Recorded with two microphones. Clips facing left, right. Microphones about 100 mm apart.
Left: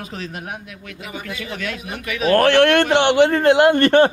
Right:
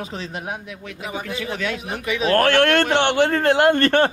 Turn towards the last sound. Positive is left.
turn(degrees=15)  # may be behind; listen again after turning